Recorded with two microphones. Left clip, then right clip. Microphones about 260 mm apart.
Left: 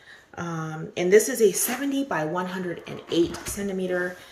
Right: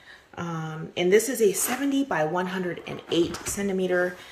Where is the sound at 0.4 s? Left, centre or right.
Centre.